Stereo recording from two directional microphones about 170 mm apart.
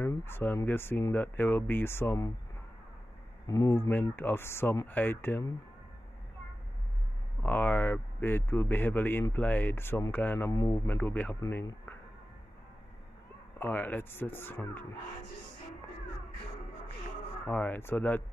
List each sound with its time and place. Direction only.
0.0 s speech: 15° left (ahead or behind)
3.4 s speech: 20° left (ahead or behind)
7.4 s speech: 10° left (ahead or behind)
13.6 s speech: 10° left (ahead or behind)
17.5 s speech: 10° left (ahead or behind)